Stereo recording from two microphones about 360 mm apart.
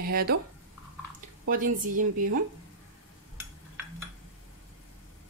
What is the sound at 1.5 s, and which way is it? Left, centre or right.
Speech, right.